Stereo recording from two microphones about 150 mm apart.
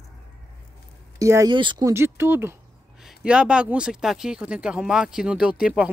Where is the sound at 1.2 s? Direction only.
20° right (ahead or behind).